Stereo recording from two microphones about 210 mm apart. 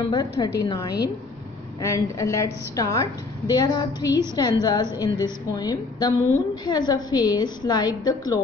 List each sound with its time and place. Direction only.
0.1 s a woman's voice: 20° left (ahead or behind)